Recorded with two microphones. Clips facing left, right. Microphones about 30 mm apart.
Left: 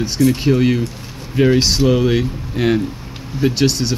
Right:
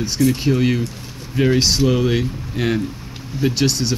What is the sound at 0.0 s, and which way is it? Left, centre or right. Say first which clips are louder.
Speech: left 2 dB; centre.